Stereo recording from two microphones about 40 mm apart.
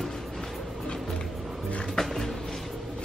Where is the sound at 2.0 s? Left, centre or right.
Centre.